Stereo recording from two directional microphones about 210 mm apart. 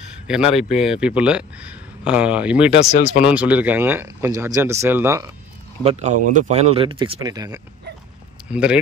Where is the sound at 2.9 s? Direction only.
35° left (ahead or behind).